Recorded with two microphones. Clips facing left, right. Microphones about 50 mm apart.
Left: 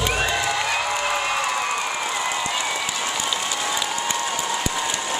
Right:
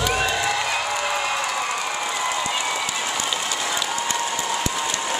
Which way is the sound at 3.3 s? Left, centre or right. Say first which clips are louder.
Even; centre.